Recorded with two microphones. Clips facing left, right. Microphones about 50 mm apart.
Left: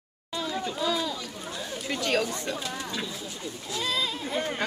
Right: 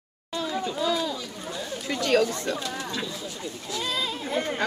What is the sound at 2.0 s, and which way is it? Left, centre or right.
A child's voice, centre.